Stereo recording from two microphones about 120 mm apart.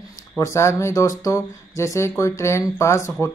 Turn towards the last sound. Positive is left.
turn(degrees=25)  # may be behind; listen again after turning